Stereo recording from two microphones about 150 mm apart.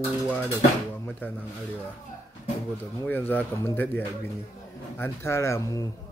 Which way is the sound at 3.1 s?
15° left (ahead or behind).